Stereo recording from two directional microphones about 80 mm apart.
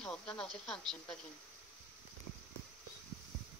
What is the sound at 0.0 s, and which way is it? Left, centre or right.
Speech, centre.